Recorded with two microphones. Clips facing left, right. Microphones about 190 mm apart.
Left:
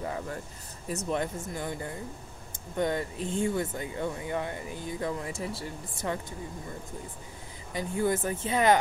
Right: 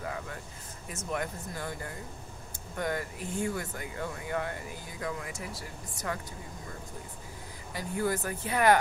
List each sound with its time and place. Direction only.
0.0 s a sound: 30° left (ahead or behind)
0.8 s speech: 30° left (ahead or behind)
7.7 s speech: 25° left (ahead or behind)